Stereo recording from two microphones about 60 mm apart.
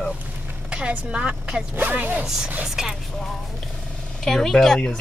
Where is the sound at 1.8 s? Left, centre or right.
Right.